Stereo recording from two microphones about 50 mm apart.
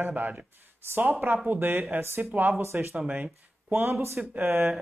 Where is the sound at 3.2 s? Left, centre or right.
Right.